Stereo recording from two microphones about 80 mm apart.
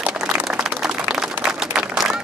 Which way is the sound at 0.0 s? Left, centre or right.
Centre.